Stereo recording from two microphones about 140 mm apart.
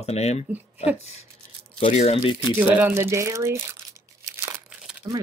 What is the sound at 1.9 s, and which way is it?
Speech, 50° left (ahead or behind).